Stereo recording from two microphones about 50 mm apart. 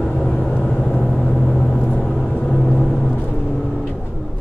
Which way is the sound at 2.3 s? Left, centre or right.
Left.